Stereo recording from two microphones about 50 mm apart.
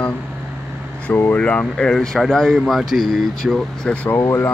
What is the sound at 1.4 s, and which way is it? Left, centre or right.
Speech, left.